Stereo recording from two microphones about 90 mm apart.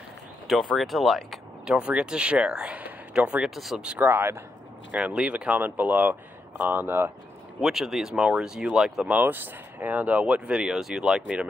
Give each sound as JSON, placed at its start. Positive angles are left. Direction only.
{"t": 0.5, "sound": "speech", "side_deg": 0}
{"t": 1.8, "sound": "speech", "side_deg": -10}
{"t": 4.0, "sound": "speech", "side_deg": -20}
{"t": 4.9, "sound": "speech", "side_deg": -10}
{"t": 7.6, "sound": "speech", "side_deg": -5}
{"t": 9.2, "sound": "speech", "side_deg": -20}